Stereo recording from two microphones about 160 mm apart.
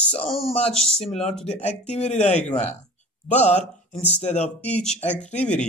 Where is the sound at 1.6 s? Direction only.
45° left (ahead or behind).